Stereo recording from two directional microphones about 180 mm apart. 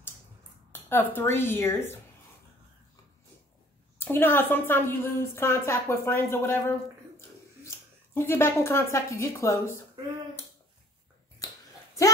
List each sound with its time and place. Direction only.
0.7 s a woman's voice: 10° left (ahead or behind)
4.0 s a woman's voice: 10° left (ahead or behind)
11.4 s a sound: 20° left (ahead or behind)